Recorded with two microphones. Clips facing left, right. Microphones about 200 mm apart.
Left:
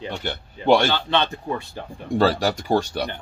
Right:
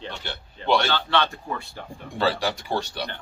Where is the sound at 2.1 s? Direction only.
40° left (ahead or behind).